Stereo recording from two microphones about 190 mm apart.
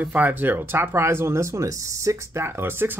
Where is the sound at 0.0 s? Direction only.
10° right (ahead or behind).